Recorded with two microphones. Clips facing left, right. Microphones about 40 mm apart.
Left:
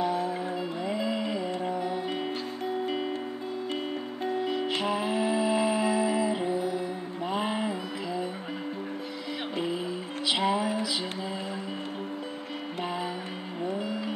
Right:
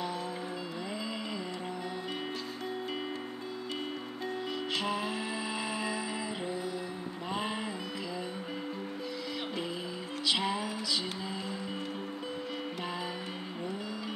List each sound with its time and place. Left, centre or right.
0.0 s music: centre
4.5 s music: centre
10.2 s music: centre